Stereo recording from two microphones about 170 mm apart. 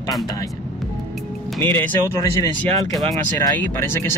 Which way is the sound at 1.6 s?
10° left (ahead or behind).